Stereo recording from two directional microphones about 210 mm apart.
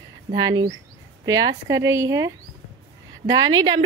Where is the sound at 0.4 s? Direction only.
15° right (ahead or behind).